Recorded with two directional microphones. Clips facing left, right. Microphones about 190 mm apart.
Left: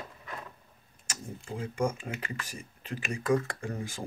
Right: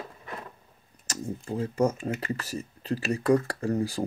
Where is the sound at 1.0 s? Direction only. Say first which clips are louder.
Right 7 dB; 40° right (ahead or behind).